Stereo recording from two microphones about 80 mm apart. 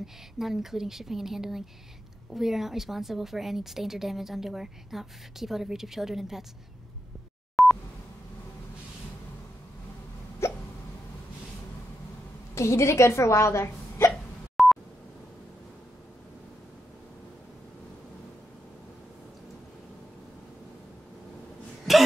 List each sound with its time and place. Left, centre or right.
0.0 s a woman's voice: centre
7.6 s a sound: centre
10.4 s hiccup: left
12.5 s speech: left
14.6 s dial tone: centre
21.9 s a sound: centre